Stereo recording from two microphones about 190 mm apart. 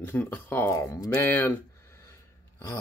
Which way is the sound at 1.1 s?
10° left (ahead or behind).